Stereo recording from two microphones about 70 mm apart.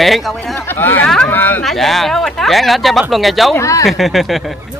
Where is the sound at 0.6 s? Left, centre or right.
Left.